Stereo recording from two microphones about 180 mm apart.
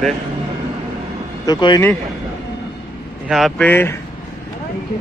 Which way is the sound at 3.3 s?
Centre (ahead or behind).